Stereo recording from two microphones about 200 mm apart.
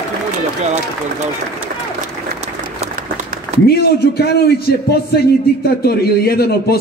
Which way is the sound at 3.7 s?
50° left (ahead or behind).